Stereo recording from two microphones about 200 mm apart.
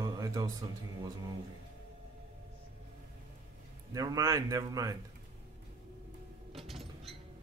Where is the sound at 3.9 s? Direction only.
15° right (ahead or behind).